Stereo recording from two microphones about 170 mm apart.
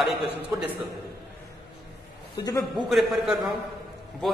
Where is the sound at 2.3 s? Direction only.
20° left (ahead or behind).